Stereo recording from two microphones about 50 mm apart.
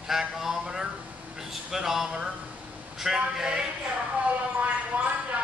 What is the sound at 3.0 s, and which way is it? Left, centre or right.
Speech, centre.